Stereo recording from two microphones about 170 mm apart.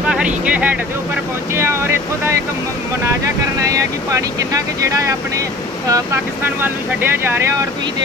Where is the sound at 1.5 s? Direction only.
15° right (ahead or behind).